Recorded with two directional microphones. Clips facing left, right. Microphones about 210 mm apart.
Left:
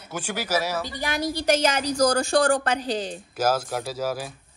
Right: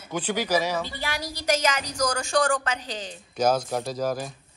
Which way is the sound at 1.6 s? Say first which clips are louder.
Left 5 dB; 30° left (ahead or behind).